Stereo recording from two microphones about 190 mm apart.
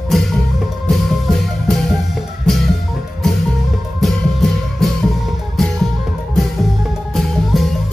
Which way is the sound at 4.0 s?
Centre (ahead or behind).